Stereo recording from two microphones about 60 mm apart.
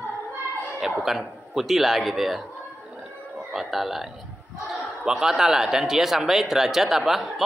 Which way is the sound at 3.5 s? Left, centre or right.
Centre.